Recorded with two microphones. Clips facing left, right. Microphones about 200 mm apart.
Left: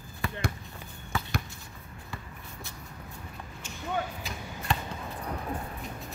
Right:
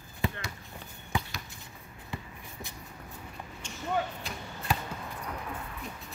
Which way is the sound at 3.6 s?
Centre (ahead or behind).